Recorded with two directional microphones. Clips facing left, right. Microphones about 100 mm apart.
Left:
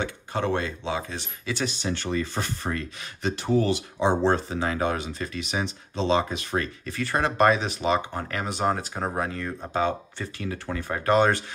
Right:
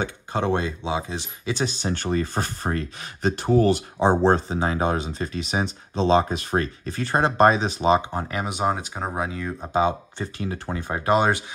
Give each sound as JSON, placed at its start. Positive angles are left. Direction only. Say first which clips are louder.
{"t": 0.0, "sound": "speech", "louder": "right 2 dB", "side_deg": -25}
{"t": 9.7, "sound": "speech", "louder": "right 4 dB", "side_deg": -20}